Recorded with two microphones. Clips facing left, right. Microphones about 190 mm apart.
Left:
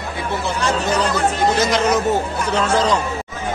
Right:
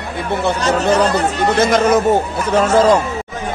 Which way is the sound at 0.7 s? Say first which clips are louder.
Right 5 dB; 65° right (ahead or behind).